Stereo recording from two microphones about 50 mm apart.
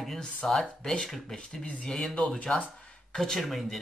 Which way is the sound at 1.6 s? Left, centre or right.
Left.